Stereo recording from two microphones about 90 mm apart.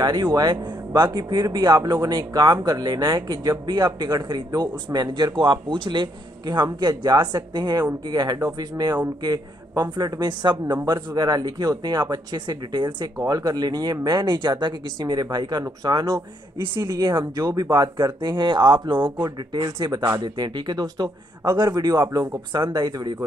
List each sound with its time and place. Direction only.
0.0 s speech: 50° right (ahead or behind)
13.2 s speech: 45° right (ahead or behind)
22.6 s speech: 35° right (ahead or behind)